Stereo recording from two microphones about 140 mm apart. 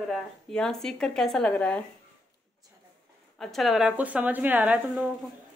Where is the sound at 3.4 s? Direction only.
Centre (ahead or behind).